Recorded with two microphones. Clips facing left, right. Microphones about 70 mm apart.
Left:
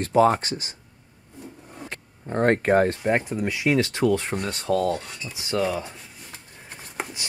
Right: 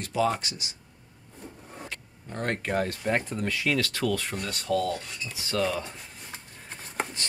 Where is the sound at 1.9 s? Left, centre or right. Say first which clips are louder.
Left 7 dB; left.